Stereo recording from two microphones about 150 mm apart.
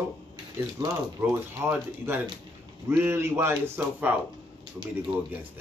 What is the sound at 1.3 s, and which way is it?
Speech, 15° right (ahead or behind).